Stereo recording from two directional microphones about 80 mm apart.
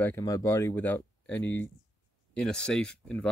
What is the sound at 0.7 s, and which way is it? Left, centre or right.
Speech, left.